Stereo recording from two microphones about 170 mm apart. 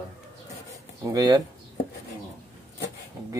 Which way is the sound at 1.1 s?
20° right (ahead or behind).